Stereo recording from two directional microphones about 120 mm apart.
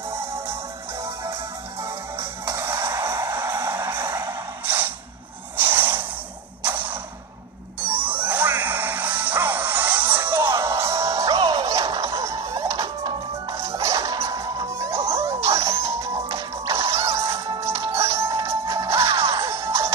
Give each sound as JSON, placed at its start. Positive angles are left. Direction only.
{"t": 1.8, "sound": "music", "side_deg": -25}
{"t": 4.6, "sound": "a sound", "side_deg": -15}
{"t": 7.8, "sound": "music", "side_deg": -15}
{"t": 13.7, "sound": "music", "side_deg": -25}
{"t": 18.9, "sound": "music", "side_deg": -55}
{"t": 19.3, "sound": "music", "side_deg": -25}